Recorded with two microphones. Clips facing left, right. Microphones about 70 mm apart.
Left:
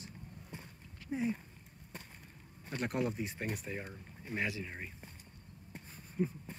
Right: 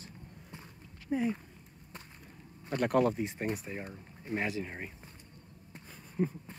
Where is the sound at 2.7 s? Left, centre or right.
Right.